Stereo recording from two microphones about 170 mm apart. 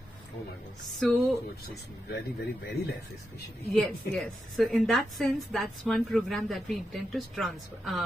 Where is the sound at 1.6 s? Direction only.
65° left (ahead or behind).